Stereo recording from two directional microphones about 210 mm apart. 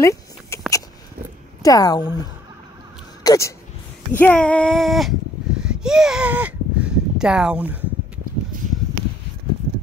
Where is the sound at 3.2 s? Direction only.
15° left (ahead or behind); by 7.8 s 5° right (ahead or behind).